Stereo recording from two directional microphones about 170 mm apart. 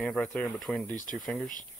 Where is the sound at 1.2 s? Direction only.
5° left (ahead or behind).